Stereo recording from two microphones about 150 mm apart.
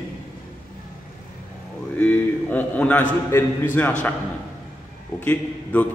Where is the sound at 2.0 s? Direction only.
10° left (ahead or behind).